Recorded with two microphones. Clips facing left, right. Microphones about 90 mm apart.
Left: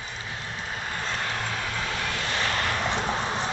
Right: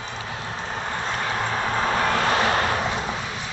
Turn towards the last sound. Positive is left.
turn(degrees=30)  # may be behind; listen again after turning